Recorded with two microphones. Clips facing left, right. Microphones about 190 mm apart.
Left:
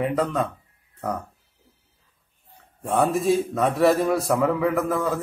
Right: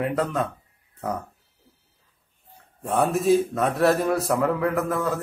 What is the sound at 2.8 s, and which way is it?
A man's voice, centre (ahead or behind).